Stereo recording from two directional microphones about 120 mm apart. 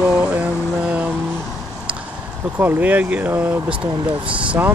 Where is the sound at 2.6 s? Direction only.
15° right (ahead or behind).